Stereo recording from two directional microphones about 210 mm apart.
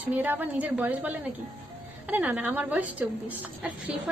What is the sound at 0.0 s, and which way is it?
A woman's voice, 10° right (ahead or behind).